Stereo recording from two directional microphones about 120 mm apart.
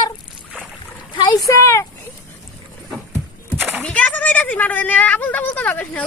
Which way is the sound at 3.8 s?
10° left (ahead or behind).